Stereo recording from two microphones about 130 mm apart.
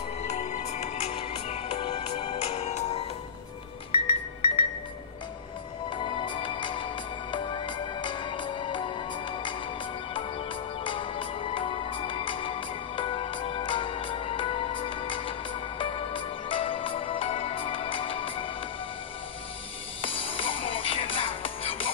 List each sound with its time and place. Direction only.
0.2 s music: 55° left (ahead or behind)
5.9 s music: 40° left (ahead or behind)
10.8 s music: 40° left (ahead or behind)
20.0 s music: 45° left (ahead or behind)